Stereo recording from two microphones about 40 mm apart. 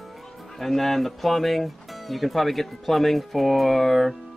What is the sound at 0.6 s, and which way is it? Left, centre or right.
Speech, centre.